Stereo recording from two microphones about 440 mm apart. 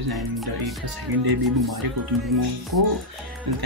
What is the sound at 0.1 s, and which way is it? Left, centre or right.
Speech, centre.